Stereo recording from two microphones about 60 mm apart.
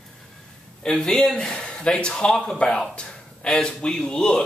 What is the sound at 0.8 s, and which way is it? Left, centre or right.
Speech, centre.